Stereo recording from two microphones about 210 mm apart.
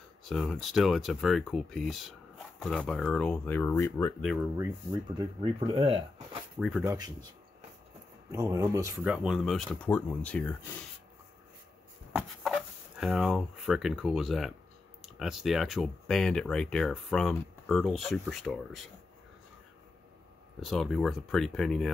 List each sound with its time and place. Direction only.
0.3 s speech: centre (ahead or behind)
4.2 s speech: centre (ahead or behind)
5.1 s speech: 25° right (ahead or behind)
6.8 s speech: 10° right (ahead or behind)
8.3 s speech: 15° right (ahead or behind); by 10.8 s 10° left (ahead or behind)
12.2 s speech: centre (ahead or behind)
20.6 s speech: centre (ahead or behind)